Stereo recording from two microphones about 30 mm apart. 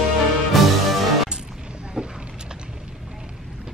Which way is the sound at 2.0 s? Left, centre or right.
Right.